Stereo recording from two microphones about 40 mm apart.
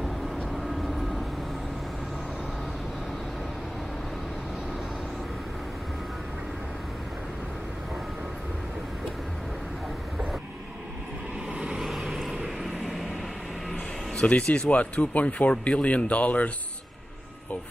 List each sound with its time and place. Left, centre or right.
0.5 s vehicle: centre
11.5 s vehicle: right
11.8 s vehicle: centre
14.1 s speech: left